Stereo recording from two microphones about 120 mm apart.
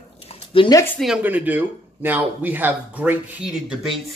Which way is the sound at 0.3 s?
50° left (ahead or behind).